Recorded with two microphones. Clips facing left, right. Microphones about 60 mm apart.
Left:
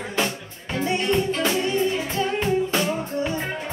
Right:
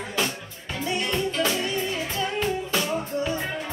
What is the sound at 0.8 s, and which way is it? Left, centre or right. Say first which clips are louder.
Music: left 4 dB; left.